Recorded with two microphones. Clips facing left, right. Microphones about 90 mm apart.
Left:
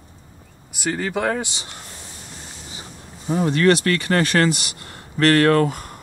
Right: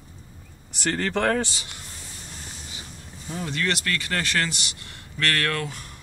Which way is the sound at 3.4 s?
45° left (ahead or behind).